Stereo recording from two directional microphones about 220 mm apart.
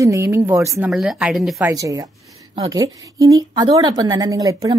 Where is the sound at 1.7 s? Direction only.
15° right (ahead or behind).